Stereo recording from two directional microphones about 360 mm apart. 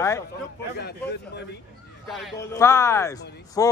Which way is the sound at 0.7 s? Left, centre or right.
Left.